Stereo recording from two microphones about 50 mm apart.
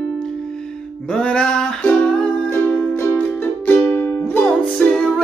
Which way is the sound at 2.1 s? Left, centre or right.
Left.